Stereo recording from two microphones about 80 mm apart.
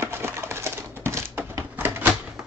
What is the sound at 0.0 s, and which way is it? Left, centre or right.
Typewriter, right.